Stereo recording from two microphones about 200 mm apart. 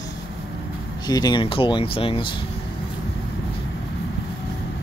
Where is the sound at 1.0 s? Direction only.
20° left (ahead or behind).